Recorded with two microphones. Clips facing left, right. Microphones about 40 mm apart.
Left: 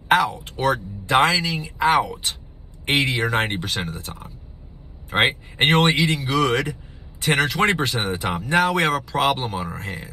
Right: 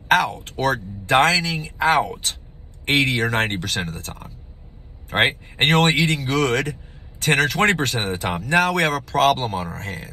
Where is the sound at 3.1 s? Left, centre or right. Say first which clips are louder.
Right 1 dB; left.